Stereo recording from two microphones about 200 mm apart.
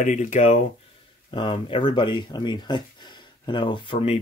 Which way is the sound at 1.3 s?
25° left (ahead or behind).